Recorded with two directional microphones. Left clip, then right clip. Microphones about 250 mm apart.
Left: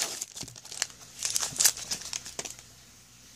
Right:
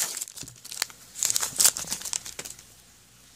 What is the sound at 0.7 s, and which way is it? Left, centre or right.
Tearing, centre.